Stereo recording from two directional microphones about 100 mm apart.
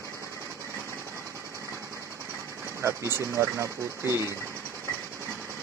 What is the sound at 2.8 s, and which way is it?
Speech, 25° right (ahead or behind).